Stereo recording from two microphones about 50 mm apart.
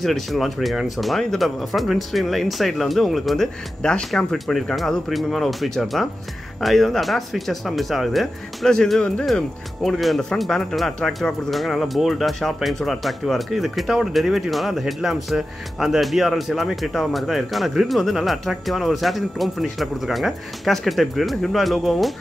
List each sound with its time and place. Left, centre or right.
0.0 s speech: centre
3.8 s speech: centre